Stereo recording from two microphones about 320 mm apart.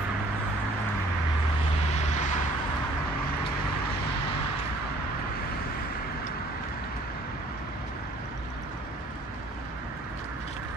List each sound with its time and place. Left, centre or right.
2.0 s vehicle: left